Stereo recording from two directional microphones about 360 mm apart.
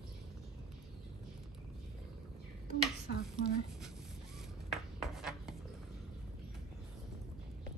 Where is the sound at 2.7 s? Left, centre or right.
Left.